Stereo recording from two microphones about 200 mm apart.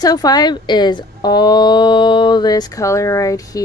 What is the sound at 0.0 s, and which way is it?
A woman's voice, 20° left (ahead or behind).